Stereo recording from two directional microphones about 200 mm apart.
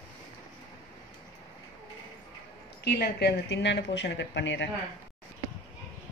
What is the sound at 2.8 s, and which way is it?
Speech, 50° left (ahead or behind).